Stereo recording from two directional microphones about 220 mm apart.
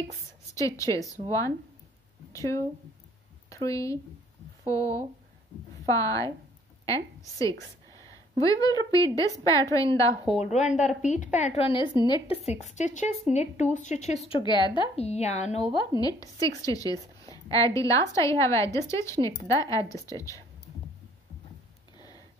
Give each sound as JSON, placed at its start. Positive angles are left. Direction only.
{"t": 0.6, "sound": "a woman's voice", "side_deg": 15}
{"t": 3.6, "sound": "a woman's voice", "side_deg": 15}
{"t": 10.4, "sound": "a woman's voice", "side_deg": 30}